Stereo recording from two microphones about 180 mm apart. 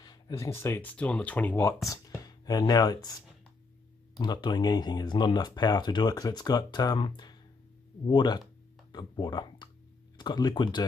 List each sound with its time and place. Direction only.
0.0 s speech: 20° left (ahead or behind)
4.2 s speech: 25° left (ahead or behind)